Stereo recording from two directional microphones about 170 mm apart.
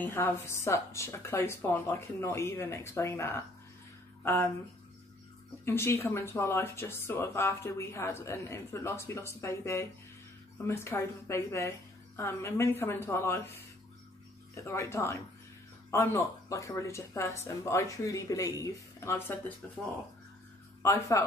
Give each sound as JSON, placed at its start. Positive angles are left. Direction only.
{"t": 0.0, "sound": "speech", "side_deg": 15}
{"t": 5.7, "sound": "speech", "side_deg": 15}
{"t": 14.5, "sound": "speech", "side_deg": 15}
{"t": 20.8, "sound": "speech", "side_deg": 20}